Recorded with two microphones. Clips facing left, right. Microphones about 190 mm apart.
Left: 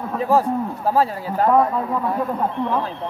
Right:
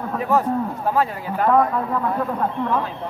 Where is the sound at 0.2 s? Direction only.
30° left (ahead or behind).